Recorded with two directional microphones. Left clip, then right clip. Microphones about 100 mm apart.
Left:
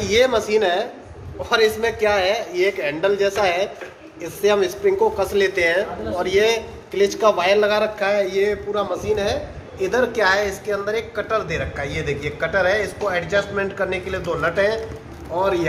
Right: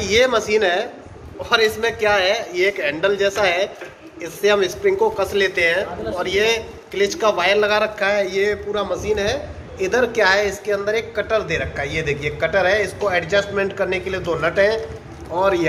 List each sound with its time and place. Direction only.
0.0 s a man's voice: 5° left (ahead or behind)
1.4 s a man's voice: 25° left (ahead or behind)
5.5 s a man's voice: 55° left (ahead or behind)
6.2 s a man's voice: 40° left (ahead or behind)
7.0 s speech: 20° left (ahead or behind)
8.0 s a man's voice: 5° left (ahead or behind)
9.8 s speech: 20° right (ahead or behind)